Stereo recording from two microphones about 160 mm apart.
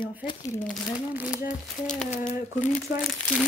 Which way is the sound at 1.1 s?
10° right (ahead or behind).